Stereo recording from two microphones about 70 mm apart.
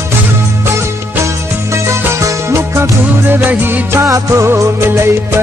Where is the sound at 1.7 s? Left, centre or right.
Right.